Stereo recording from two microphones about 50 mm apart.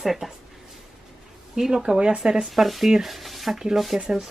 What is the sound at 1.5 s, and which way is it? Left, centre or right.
Speech, centre.